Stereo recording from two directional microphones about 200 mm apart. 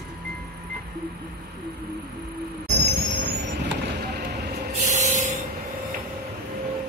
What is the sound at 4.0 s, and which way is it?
Vehicle, 55° right (ahead or behind).